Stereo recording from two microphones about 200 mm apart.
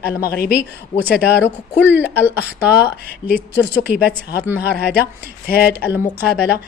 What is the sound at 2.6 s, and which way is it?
Speech, 55° left (ahead or behind).